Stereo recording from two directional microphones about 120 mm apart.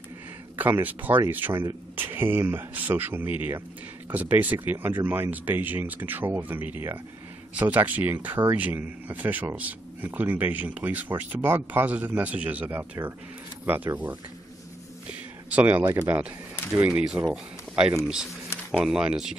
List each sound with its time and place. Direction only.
0.6 s speech: 15° right (ahead or behind)
15.5 s speech: 15° right (ahead or behind)